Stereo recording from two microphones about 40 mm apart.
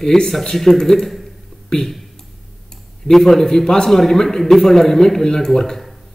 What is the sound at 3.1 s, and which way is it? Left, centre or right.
Speech, centre.